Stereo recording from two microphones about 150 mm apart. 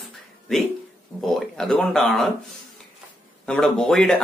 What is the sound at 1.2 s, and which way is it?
Speech, centre (ahead or behind).